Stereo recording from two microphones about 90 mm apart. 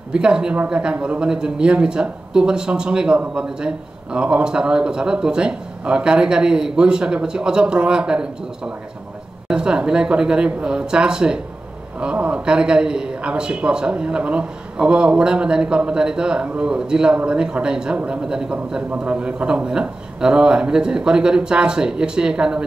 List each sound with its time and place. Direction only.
0.1 s a man's voice: 10° right (ahead or behind)